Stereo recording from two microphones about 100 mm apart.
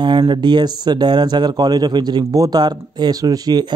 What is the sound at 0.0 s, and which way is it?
A man's voice, 55° right (ahead or behind).